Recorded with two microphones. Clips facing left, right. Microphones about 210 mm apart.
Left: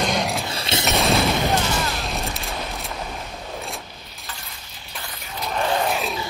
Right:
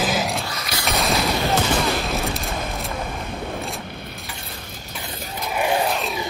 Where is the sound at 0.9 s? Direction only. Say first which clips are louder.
Left 1 dB; centre (ahead or behind).